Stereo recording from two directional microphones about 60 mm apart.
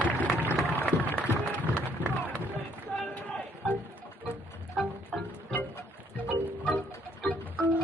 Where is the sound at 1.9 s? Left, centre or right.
Right.